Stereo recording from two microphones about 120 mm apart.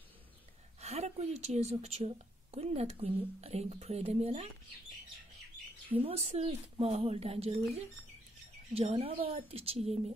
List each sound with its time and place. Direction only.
0.7 s a woman's voice: 65° right (ahead or behind)
5.9 s a woman's voice: 55° right (ahead or behind)
8.7 s a woman's voice: 55° right (ahead or behind)